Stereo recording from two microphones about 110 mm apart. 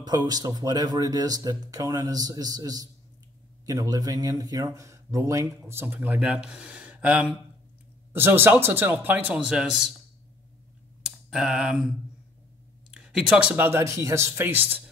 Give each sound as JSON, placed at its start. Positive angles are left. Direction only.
{"t": 0.0, "sound": "a man's voice", "side_deg": -40}
{"t": 11.0, "sound": "a sound", "side_deg": -5}
{"t": 12.9, "sound": "speech", "side_deg": -10}